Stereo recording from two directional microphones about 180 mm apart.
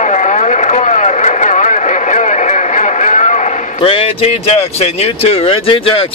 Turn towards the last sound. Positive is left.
turn(degrees=30)  # may be behind; listen again after turning